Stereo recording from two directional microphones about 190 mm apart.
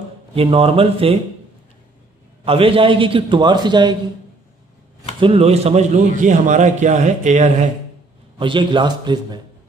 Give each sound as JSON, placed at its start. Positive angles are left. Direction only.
{"t": 0.3, "sound": "a man's voice", "side_deg": -30}
{"t": 2.4, "sound": "a man's voice", "side_deg": -30}
{"t": 5.2, "sound": "a man's voice", "side_deg": -30}
{"t": 8.4, "sound": "a man's voice", "side_deg": -25}